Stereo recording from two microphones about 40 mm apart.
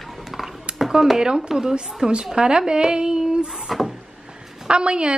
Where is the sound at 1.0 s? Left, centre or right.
Centre.